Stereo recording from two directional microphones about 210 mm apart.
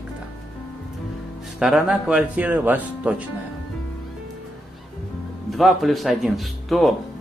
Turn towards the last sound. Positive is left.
turn(degrees=0)  # may be behind; listen again after turning